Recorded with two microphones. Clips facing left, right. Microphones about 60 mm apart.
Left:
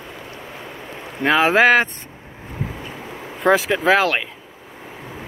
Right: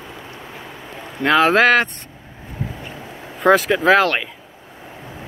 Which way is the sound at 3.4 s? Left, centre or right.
Centre.